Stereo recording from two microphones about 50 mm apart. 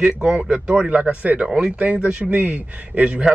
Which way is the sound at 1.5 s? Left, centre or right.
Centre.